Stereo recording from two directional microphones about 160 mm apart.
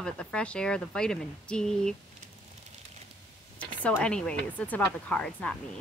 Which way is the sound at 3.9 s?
5° left (ahead or behind).